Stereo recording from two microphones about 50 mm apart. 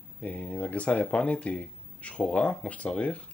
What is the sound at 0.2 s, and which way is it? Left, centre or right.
Speech, left.